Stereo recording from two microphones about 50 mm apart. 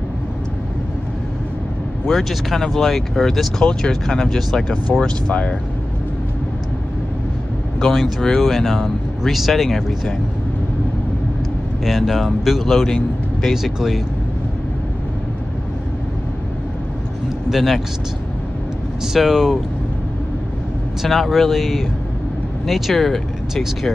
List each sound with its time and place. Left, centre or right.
2.0 s speech: centre
5.0 s speech: centre
7.8 s speech: centre
11.8 s speech: centre
17.5 s speech: centre
19.1 s speech: centre
21.0 s speech: centre